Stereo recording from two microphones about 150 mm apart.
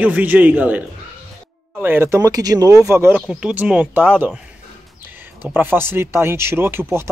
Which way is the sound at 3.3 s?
5° right (ahead or behind).